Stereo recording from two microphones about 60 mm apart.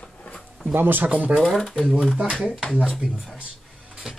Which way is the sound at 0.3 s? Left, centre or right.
Centre.